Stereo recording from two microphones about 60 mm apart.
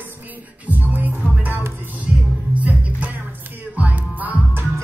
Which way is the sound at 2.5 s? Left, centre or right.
Right.